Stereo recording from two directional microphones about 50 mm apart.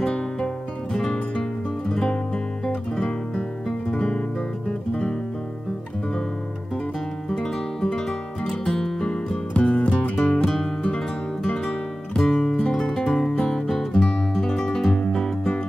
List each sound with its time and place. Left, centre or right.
0.0 s music: centre
3.6 s guitar: centre
4.6 s music: left
7.2 s music: centre
9.6 s music: left
12.2 s music: centre